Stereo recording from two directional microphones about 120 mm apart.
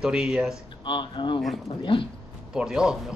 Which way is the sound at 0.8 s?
40° left (ahead or behind).